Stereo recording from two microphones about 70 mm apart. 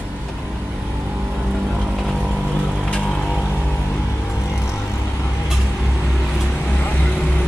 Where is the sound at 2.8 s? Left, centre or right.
Centre.